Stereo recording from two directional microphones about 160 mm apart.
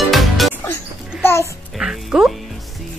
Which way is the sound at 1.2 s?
15° left (ahead or behind).